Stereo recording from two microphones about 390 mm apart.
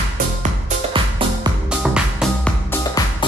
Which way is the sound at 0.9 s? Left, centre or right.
Centre.